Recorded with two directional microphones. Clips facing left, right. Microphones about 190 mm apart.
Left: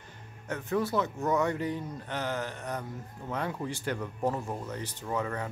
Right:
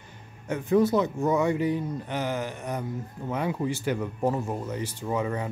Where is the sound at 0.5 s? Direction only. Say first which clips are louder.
Right 8 dB; 15° right (ahead or behind).